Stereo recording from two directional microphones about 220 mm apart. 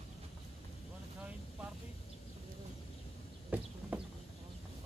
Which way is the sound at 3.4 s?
5° right (ahead or behind).